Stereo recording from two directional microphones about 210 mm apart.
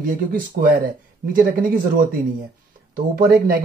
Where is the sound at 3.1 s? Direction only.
45° right (ahead or behind).